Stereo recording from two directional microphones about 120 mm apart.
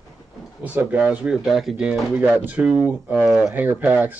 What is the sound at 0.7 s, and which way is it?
Speech, 10° right (ahead or behind).